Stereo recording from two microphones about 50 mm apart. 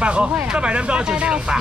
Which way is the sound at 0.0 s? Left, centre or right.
Right.